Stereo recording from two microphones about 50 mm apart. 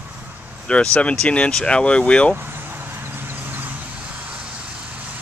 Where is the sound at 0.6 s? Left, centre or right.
Left.